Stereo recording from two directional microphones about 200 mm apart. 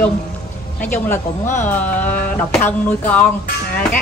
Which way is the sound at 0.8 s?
10° left (ahead or behind).